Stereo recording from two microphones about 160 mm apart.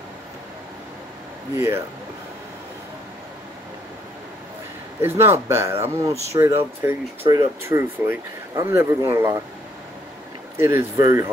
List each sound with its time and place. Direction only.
5.0 s speech: 15° right (ahead or behind)
10.6 s speech: 20° right (ahead or behind)